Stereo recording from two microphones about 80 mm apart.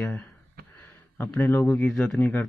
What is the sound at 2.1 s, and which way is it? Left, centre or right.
Speech, left.